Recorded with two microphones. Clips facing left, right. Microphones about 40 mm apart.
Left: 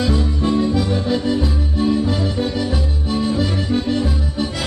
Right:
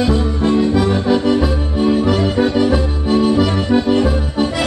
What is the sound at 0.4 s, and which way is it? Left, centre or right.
Music, right.